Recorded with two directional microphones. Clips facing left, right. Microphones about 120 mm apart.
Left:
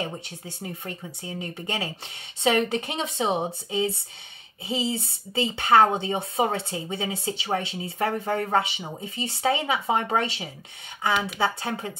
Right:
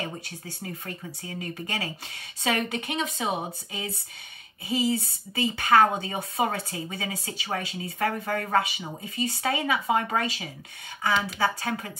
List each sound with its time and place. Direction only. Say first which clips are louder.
0.0 s a woman's voice: left 2 dB; 20° left (ahead or behind)